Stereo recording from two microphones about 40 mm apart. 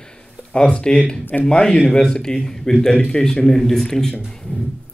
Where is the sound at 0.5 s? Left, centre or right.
Left.